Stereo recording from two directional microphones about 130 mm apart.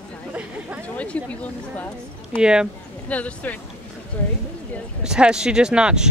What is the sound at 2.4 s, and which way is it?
Speech, 5° right (ahead or behind).